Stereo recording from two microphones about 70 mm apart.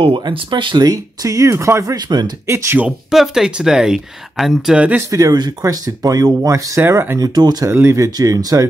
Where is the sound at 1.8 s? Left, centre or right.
Right.